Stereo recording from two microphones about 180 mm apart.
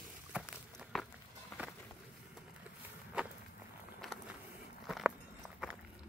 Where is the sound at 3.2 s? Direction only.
5° right (ahead or behind).